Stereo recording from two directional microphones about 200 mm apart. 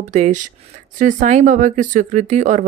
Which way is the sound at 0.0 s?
35° right (ahead or behind).